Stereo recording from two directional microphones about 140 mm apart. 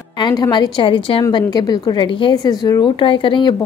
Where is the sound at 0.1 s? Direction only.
30° left (ahead or behind).